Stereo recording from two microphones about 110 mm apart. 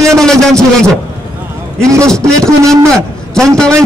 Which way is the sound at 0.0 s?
5° left (ahead or behind).